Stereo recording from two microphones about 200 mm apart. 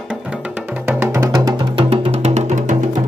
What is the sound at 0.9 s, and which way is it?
Music, 10° right (ahead or behind).